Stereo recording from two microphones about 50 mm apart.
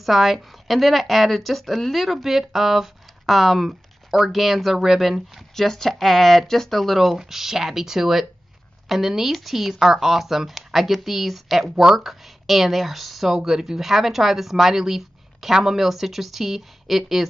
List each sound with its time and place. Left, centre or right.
0.0 s speech: centre
5.5 s speech: centre